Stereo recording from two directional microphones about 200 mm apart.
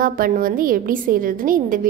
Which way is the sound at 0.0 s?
45° right (ahead or behind).